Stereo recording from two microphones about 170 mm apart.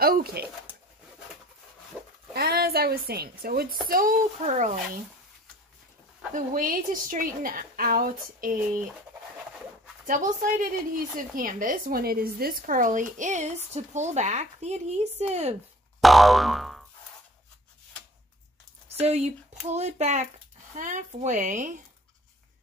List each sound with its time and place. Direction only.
0.0 s pigeon: 60° right (ahead or behind)
2.3 s a woman's voice: 65° right (ahead or behind)
3.9 s a woman's voice: 55° right (ahead or behind)
6.3 s a woman's voice: 55° right (ahead or behind)
10.0 s a woman's voice: 50° right (ahead or behind)
16.0 s boing: centre (ahead or behind)
18.9 s a woman's voice: 40° right (ahead or behind)